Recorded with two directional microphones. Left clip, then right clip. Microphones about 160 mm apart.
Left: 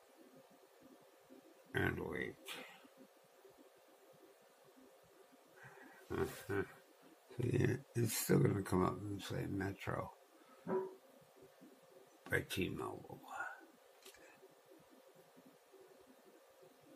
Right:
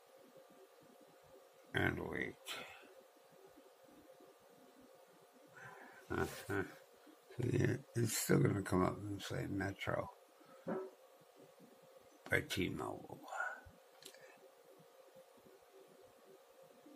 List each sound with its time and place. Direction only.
1.7 s speech: 15° right (ahead or behind)
6.0 s speech: 20° right (ahead or behind)
12.2 s speech: 20° right (ahead or behind)